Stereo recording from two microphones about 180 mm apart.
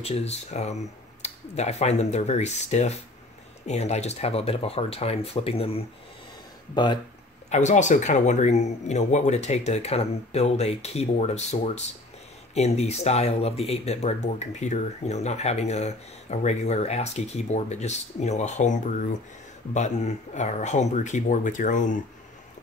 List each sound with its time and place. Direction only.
0.0 s speech: 35° left (ahead or behind)
7.4 s speech: 40° left (ahead or behind)